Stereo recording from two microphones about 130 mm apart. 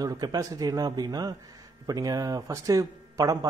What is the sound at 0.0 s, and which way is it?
Speech, 30° right (ahead or behind).